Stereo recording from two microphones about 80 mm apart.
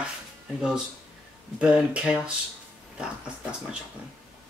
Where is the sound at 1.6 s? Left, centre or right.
Centre.